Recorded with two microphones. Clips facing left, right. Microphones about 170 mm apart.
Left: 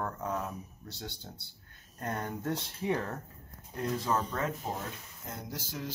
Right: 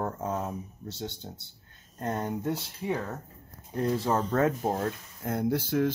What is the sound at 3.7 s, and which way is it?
Speech, 30° right (ahead or behind).